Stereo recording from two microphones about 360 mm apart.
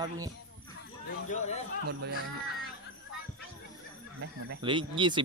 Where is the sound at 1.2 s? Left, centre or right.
Centre.